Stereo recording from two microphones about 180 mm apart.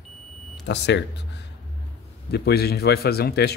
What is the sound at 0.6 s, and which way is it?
Speech, 70° left (ahead or behind).